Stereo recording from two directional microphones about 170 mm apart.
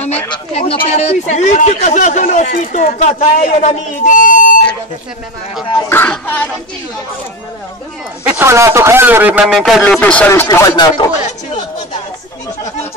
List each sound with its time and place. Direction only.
0.0 s a man's voice: 10° left (ahead or behind)
0.3 s a man's voice: 35° left (ahead or behind)
5.7 s a man's voice: 20° left (ahead or behind)
8.2 s a man's voice: 10° right (ahead or behind)
9.6 s a man's voice: centre (ahead or behind); by 11.1 s 20° left (ahead or behind)